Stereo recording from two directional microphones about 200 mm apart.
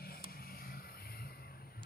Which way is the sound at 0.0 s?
50° left (ahead or behind).